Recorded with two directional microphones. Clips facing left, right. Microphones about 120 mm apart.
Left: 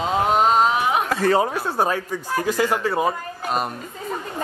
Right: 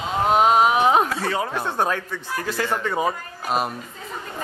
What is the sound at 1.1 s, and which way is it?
Speech, 50° left (ahead or behind).